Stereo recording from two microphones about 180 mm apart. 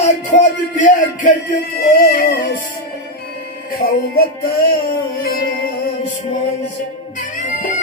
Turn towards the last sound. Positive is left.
turn(degrees=45)  # may be behind; listen again after turning